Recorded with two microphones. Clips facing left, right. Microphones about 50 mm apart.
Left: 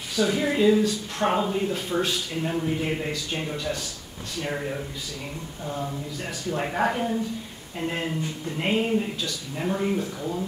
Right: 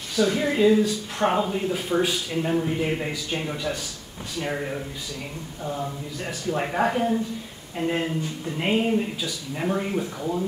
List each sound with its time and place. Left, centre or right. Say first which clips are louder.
0.1 s a man's voice: right 1 dB; centre
6.5 s speech: right 2 dB; centre